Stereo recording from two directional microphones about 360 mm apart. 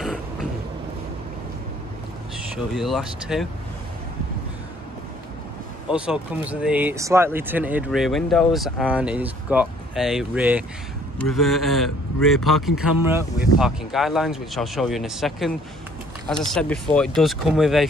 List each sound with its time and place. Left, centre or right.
2.7 s speech: centre
5.9 s speech: centre